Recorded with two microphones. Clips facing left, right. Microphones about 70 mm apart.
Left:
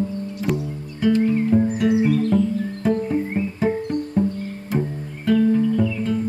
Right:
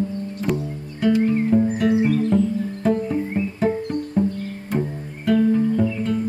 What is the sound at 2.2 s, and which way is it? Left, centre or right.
Music, centre.